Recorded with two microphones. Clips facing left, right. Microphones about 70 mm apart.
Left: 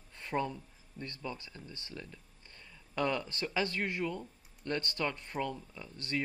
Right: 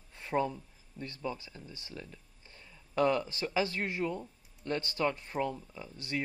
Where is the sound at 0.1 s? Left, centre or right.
Centre.